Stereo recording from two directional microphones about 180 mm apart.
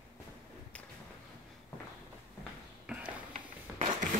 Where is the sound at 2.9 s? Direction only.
5° right (ahead or behind).